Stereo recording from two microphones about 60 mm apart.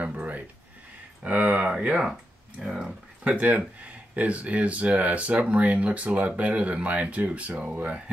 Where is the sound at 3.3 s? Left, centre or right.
Right.